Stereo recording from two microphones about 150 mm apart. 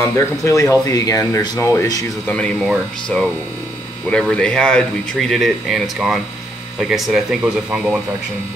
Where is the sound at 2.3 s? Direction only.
5° left (ahead or behind).